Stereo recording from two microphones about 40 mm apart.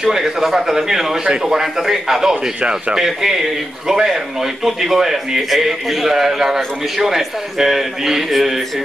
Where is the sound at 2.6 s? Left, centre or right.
Right.